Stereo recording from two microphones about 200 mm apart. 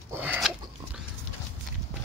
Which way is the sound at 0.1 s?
10° right (ahead or behind).